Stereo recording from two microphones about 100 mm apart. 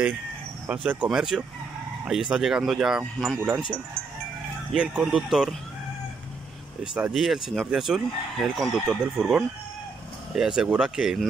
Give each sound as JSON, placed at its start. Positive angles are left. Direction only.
{"t": 0.7, "sound": "speech", "side_deg": -15}
{"t": 3.3, "sound": "speech", "side_deg": -15}
{"t": 4.7, "sound": "speech", "side_deg": -5}
{"t": 6.8, "sound": "speech", "side_deg": -5}